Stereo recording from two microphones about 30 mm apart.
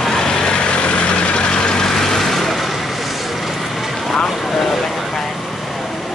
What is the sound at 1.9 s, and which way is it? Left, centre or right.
Vehicle, centre.